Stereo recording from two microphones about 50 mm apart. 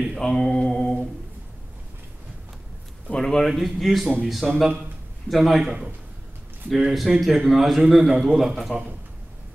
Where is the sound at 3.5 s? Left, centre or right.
Centre.